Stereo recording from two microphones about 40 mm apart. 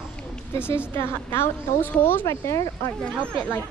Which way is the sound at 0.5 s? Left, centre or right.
Left.